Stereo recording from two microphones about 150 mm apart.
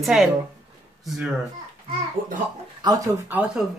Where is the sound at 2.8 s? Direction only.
25° right (ahead or behind).